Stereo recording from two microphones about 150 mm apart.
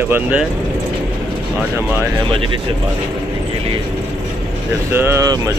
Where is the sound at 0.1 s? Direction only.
10° right (ahead or behind).